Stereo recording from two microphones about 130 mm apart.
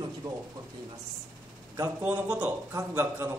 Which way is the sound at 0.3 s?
25° right (ahead or behind).